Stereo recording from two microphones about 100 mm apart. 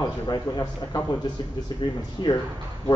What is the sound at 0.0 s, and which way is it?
A man's voice, 40° left (ahead or behind).